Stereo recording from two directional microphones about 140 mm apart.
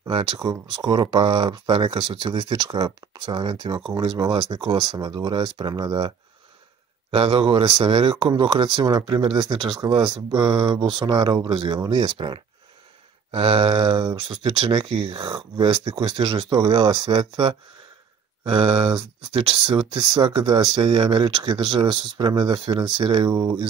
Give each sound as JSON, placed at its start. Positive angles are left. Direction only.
{"t": 0.0, "sound": "speech", "side_deg": -35}
{"t": 7.1, "sound": "speech", "side_deg": -40}